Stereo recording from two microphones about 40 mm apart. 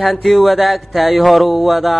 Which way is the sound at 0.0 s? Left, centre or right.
Centre.